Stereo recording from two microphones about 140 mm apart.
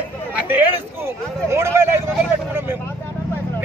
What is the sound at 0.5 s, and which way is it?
Speech, 10° right (ahead or behind).